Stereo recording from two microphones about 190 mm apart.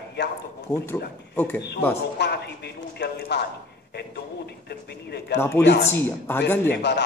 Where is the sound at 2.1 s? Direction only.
60° left (ahead or behind).